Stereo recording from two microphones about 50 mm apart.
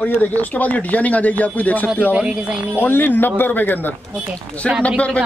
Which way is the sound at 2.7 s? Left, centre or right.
Left.